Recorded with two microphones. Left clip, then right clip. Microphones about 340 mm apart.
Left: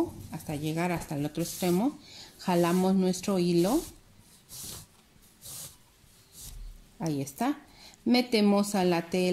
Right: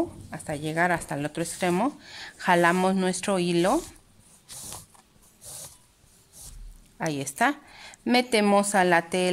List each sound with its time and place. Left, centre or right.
0.3 s speech: right
7.0 s a woman's voice: right